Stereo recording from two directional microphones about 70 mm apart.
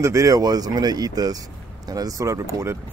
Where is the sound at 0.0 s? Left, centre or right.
Right.